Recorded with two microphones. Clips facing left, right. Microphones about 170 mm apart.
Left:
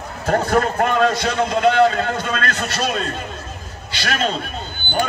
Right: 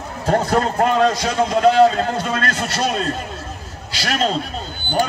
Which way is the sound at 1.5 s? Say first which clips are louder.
Right 3 dB; 35° right (ahead or behind).